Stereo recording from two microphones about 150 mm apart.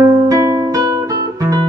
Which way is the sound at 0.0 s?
20° right (ahead or behind).